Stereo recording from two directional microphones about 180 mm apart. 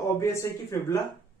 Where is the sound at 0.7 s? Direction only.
15° left (ahead or behind).